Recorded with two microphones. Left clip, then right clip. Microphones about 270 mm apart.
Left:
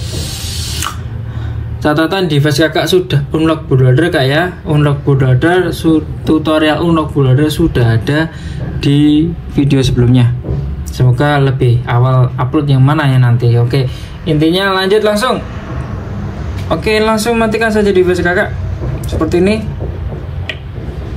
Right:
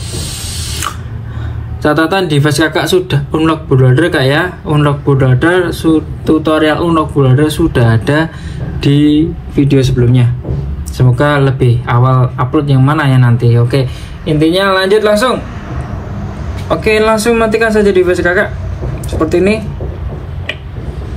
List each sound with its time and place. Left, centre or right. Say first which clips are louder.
0.1 s spray: even; centre
1.8 s speech: right 2 dB; centre
11.0 s speech: right 2 dB; centre
16.6 s speech: right 2 dB; centre